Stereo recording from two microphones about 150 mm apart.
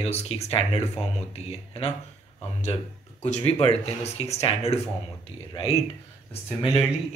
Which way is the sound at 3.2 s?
45° left (ahead or behind).